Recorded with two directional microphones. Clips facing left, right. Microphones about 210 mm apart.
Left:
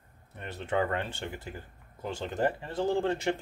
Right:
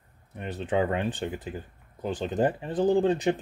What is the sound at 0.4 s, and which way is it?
Speech, 15° right (ahead or behind).